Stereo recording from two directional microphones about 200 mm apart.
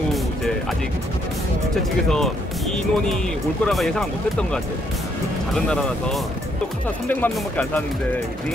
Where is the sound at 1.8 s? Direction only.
Centre (ahead or behind).